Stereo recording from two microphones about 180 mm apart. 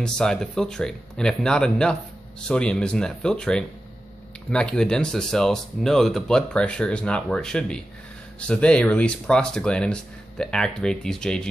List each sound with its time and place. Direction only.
0.0 s speech: 5° left (ahead or behind)